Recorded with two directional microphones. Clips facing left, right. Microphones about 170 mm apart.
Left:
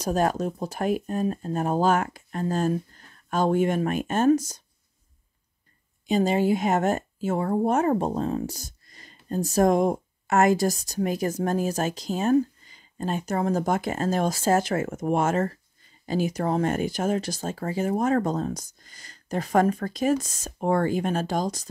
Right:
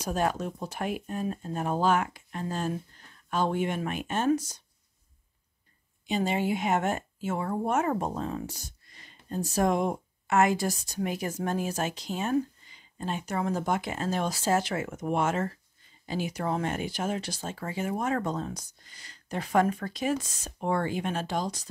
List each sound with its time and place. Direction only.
0.0 s speech: 40° left (ahead or behind)
6.0 s speech: 40° left (ahead or behind)